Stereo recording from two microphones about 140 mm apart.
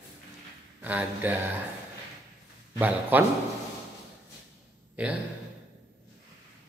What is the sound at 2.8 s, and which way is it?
Speech, 15° right (ahead or behind).